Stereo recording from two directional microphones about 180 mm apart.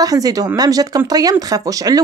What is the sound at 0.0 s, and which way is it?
Speech, 20° right (ahead or behind).